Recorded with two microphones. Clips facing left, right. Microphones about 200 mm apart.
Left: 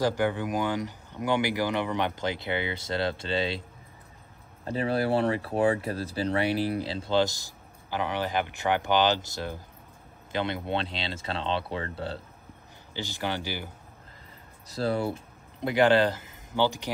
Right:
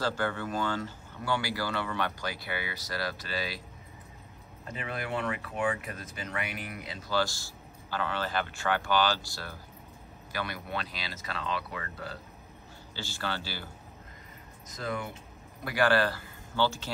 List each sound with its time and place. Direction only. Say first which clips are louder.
0.0 s speech: left 5 dB; 15° left (ahead or behind)
4.6 s speech: left 10 dB; 35° left (ahead or behind)
12.9 s a man's voice: left 4 dB; 15° left (ahead or behind)
14.7 s speech: left 8 dB; 35° left (ahead or behind)
15.6 s speech: left 5 dB; 20° left (ahead or behind)